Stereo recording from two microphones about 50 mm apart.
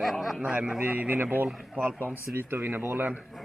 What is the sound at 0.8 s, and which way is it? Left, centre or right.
Speech, right.